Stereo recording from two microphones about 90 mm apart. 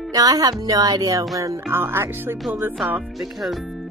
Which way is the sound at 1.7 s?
25° right (ahead or behind).